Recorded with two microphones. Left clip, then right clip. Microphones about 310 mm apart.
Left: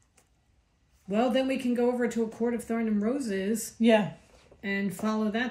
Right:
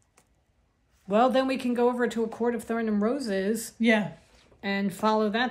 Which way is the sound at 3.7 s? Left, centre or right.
Centre.